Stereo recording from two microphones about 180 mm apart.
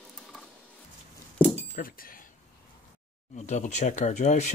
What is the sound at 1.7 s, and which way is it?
Speech, 50° left (ahead or behind).